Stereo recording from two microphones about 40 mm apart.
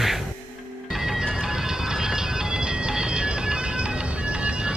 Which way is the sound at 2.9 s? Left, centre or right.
Right.